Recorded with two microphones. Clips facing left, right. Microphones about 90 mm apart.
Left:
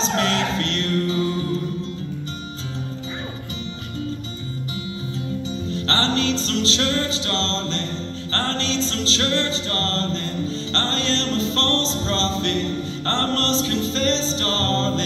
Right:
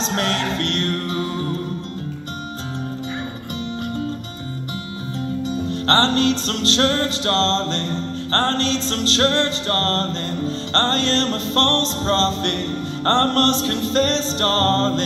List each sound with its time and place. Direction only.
0.1 s music: 45° right (ahead or behind)
5.5 s music: 50° right (ahead or behind)